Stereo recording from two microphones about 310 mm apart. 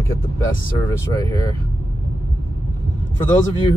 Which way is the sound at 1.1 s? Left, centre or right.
Centre.